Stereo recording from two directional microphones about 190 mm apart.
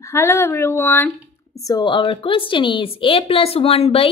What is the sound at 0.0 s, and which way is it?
Speech, 15° left (ahead or behind).